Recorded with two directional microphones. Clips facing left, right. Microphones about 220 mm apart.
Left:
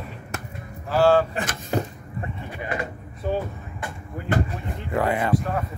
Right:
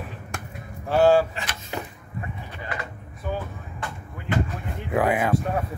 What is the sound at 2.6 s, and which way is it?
Speech, 25° left (ahead or behind).